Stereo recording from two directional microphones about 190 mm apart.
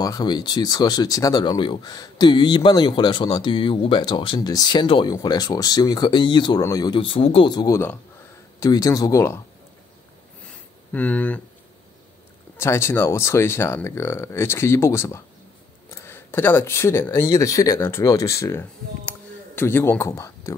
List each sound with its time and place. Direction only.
0.0 s speech: 20° left (ahead or behind)
10.9 s speech: 10° left (ahead or behind)
12.5 s speech: 15° left (ahead or behind)